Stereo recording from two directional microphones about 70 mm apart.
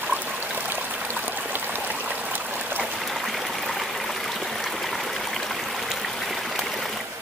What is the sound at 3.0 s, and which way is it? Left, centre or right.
Stream, centre.